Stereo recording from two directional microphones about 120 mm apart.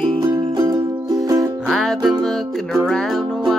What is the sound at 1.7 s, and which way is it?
Music, centre (ahead or behind).